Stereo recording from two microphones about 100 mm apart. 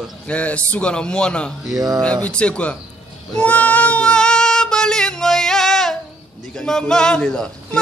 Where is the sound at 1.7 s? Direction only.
35° right (ahead or behind).